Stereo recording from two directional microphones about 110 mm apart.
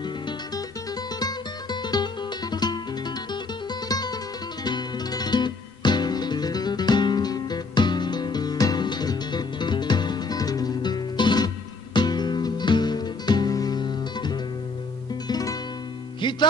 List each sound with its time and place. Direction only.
1.2 s music: 40° left (ahead or behind)
3.9 s music: 35° left (ahead or behind)